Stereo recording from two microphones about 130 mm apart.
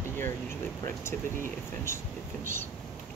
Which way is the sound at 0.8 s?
20° left (ahead or behind).